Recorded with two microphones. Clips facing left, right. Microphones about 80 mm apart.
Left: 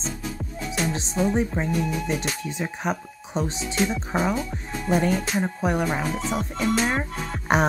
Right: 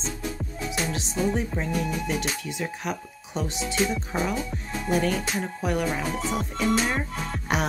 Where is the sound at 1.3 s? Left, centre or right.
Left.